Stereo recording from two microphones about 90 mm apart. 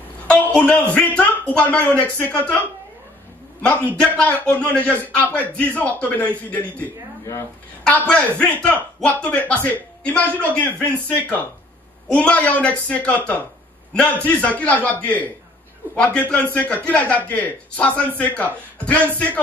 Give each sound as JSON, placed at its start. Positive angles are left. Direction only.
{"t": 0.3, "sound": "speech", "side_deg": 10}
{"t": 3.9, "sound": "speech", "side_deg": 15}
{"t": 8.1, "sound": "speech", "side_deg": 15}